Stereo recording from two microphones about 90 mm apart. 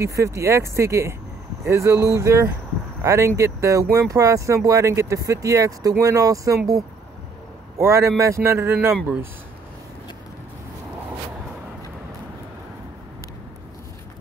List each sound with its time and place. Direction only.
0.0 s speech: 35° right (ahead or behind)
7.7 s a man's voice: 30° right (ahead or behind)